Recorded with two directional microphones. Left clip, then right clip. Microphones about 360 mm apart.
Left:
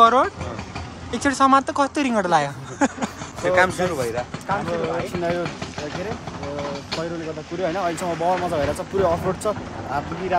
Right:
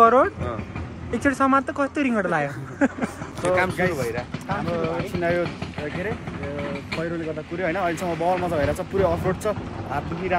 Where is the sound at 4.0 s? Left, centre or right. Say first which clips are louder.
Left 2 dB; left; by 8.0 s centre.